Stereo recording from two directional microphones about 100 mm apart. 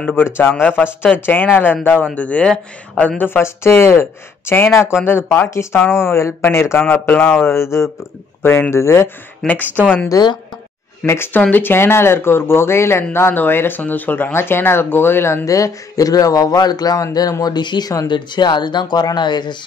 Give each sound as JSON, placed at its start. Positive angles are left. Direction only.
{"t": 0.0, "sound": "speech", "side_deg": 20}
{"t": 3.2, "sound": "speech", "side_deg": 25}
{"t": 9.4, "sound": "speech", "side_deg": 5}
{"t": 10.1, "sound": "speech", "side_deg": 35}